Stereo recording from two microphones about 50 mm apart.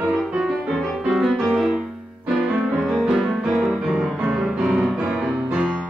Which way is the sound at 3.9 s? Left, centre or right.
Centre.